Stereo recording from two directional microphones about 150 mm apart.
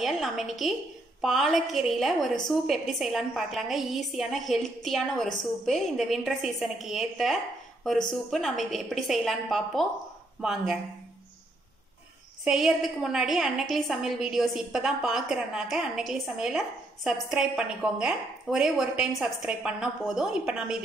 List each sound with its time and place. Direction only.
0.0 s a woman's voice: centre (ahead or behind)
12.4 s a woman's voice: 5° right (ahead or behind)